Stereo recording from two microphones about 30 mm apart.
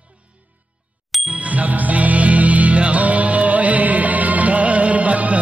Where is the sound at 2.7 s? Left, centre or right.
Right.